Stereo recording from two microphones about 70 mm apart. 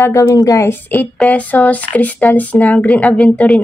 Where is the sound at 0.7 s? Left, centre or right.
Left.